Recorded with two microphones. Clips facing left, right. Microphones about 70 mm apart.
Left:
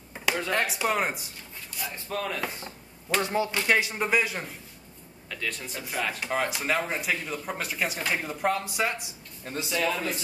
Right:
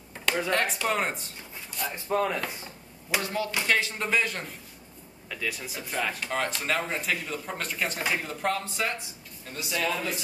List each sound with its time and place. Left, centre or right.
0.1 s a sound: centre
0.5 s speech: centre
1.9 s speech: centre
2.4 s a sound: centre
3.2 s speech: left
5.3 s speech: centre
9.4 s speech: left
9.7 s speech: centre